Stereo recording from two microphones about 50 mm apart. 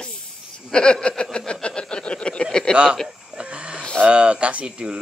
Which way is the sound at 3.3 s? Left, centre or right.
Right.